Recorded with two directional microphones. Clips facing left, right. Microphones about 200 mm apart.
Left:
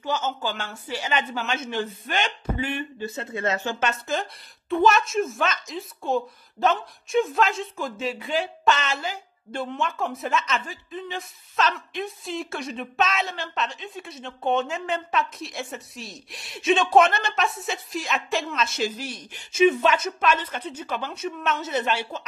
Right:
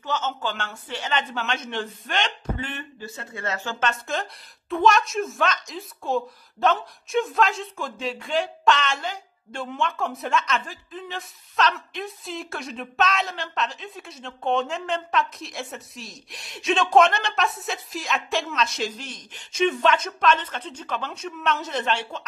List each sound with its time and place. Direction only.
0.0 s speech: 10° left (ahead or behind)
3.0 s speech: 20° left (ahead or behind)
4.1 s a woman's voice: centre (ahead or behind)